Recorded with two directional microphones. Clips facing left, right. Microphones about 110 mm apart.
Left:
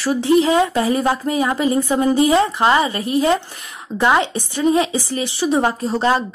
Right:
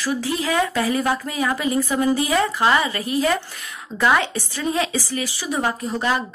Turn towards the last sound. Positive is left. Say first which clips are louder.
# left 5 dB
turn(degrees=30)  # may be behind; listen again after turning